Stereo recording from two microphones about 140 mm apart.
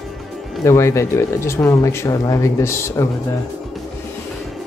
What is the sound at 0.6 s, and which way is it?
Speech, 20° left (ahead or behind).